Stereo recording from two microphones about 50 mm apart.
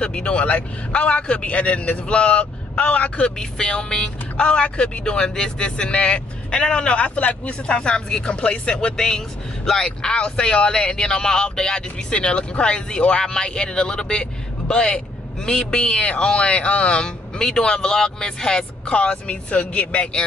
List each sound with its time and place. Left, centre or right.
0.0 s a man's voice: left